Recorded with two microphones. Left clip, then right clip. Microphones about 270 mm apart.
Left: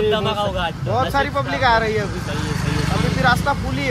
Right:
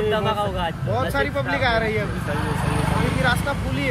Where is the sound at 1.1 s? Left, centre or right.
Left.